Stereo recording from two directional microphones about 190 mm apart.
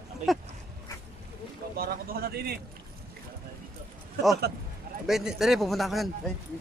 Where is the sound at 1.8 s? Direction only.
50° right (ahead or behind).